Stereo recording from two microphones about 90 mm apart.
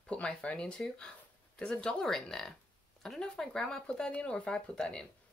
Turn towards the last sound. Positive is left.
turn(degrees=10)  # may be behind; listen again after turning